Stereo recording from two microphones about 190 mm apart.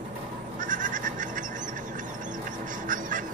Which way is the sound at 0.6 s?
45° right (ahead or behind).